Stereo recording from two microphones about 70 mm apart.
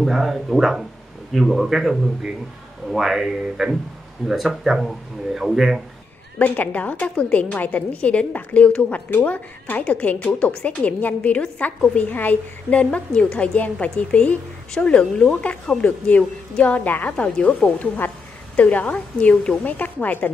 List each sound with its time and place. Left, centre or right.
0.0 s speech: centre
6.3 s a woman's voice: left